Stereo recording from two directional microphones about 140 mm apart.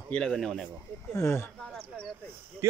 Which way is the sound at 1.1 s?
20° left (ahead or behind).